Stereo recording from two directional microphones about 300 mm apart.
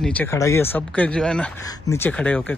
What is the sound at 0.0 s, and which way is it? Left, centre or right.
Speech, centre.